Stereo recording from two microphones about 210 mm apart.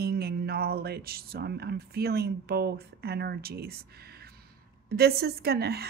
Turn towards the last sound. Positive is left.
turn(degrees=-50)  # may be behind; listen again after turning